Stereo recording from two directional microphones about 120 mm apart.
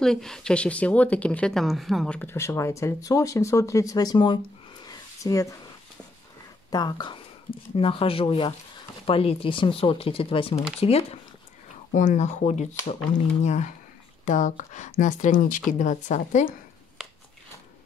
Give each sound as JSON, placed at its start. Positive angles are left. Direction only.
{"t": 0.0, "sound": "speech", "side_deg": 5}
{"t": 2.1, "sound": "speech", "side_deg": 20}
{"t": 4.8, "sound": "a sound", "side_deg": 25}
{"t": 6.7, "sound": "speech", "side_deg": 35}
{"t": 7.7, "sound": "speech", "side_deg": 50}
{"t": 11.9, "sound": "speech", "side_deg": 90}
{"t": 14.2, "sound": "speech", "side_deg": 90}